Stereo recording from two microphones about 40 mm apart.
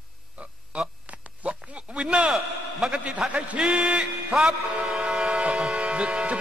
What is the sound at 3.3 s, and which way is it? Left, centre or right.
Speech, right.